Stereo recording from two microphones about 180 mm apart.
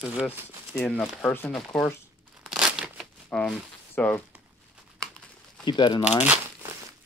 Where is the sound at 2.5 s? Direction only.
5° right (ahead or behind).